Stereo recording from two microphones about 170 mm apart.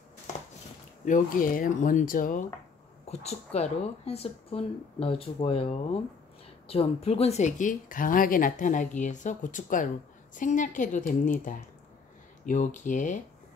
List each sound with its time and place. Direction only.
1.0 s speech: 50° left (ahead or behind)
3.1 s speech: 40° left (ahead or behind)